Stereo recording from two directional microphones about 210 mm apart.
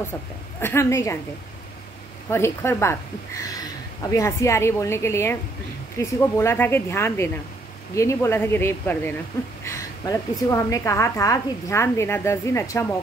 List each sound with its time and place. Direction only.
0.6 s a woman's voice: 10° left (ahead or behind)
2.2 s a woman's voice: 10° left (ahead or behind)
9.7 s a sound: 15° left (ahead or behind)
10.5 s a woman's voice: 15° left (ahead or behind)